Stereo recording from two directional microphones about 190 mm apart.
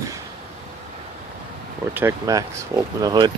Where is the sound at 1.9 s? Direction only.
15° right (ahead or behind).